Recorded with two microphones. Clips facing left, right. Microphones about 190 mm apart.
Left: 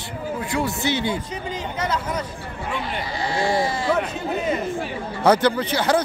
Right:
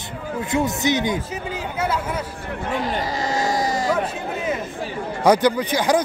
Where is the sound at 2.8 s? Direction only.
40° right (ahead or behind).